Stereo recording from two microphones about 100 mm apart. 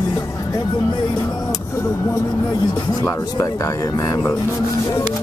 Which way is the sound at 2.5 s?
50° left (ahead or behind).